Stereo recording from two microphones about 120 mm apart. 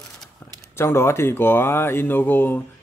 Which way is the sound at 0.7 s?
20° left (ahead or behind).